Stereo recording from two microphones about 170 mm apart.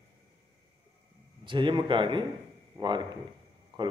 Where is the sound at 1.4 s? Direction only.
30° right (ahead or behind).